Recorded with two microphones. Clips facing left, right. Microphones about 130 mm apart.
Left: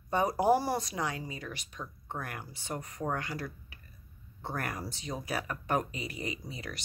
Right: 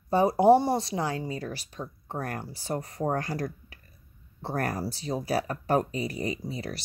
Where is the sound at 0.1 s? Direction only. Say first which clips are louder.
Right 7 dB; 30° right (ahead or behind).